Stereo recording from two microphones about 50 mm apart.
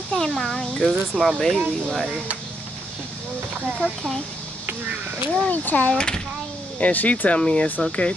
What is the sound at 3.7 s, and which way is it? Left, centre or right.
Speech, centre.